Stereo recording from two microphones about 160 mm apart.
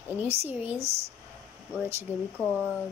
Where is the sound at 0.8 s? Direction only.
40° right (ahead or behind).